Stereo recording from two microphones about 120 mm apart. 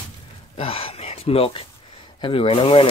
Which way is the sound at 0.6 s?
50° left (ahead or behind).